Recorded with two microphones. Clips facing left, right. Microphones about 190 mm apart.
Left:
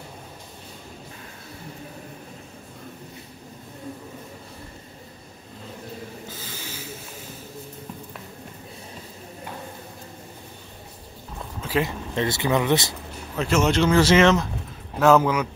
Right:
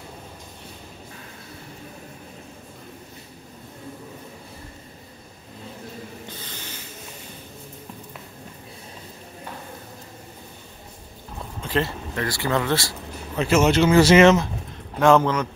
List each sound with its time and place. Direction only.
6.2 s snort: 5° left (ahead or behind)
11.6 s a sound: 5° left (ahead or behind)
12.2 s speech: 20° left (ahead or behind)
13.4 s speech: 5° right (ahead or behind)
15.0 s speech: 5° left (ahead or behind)